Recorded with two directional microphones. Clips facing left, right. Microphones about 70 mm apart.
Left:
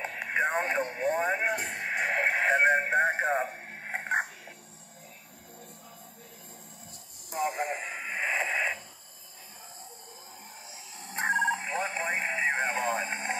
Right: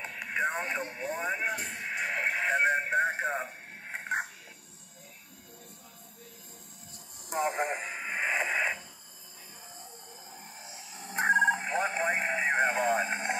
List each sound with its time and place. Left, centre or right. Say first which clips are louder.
0.0 s radio: left 2 dB; left
7.3 s a sound: right 1 dB; right
7.8 s radio: even; centre
8.1 s wheeze: even; centre
10.6 s radio: right 1 dB; right